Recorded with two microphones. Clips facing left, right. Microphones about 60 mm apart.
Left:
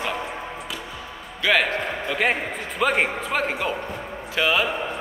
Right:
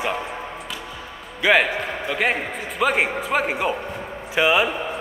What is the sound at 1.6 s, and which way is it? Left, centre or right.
A man's voice, centre.